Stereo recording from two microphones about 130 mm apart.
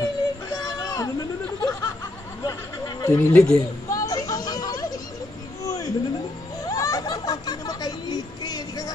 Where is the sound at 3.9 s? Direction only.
25° left (ahead or behind).